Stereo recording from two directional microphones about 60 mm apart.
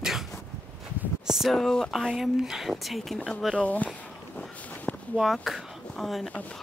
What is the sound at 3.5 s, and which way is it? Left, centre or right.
Speech, left.